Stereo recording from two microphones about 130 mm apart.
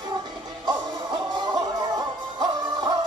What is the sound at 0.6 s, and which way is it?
Music, 35° right (ahead or behind).